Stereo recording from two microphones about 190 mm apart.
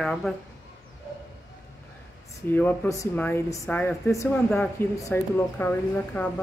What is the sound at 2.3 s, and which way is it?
Speech, 15° left (ahead or behind).